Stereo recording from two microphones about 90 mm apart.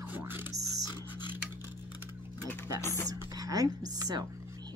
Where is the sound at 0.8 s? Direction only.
55° left (ahead or behind).